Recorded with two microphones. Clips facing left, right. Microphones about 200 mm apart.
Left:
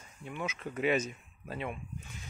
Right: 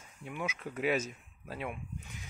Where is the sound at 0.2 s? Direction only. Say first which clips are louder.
Even; 10° right (ahead or behind).